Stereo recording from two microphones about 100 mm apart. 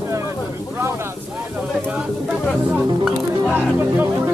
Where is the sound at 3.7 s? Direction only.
20° right (ahead or behind).